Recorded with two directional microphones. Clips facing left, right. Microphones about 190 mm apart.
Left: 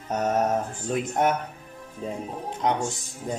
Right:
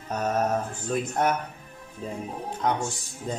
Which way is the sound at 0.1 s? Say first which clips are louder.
Left 2 dB; 20° left (ahead or behind).